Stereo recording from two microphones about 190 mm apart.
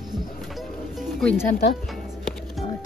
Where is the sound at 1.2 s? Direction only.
10° left (ahead or behind).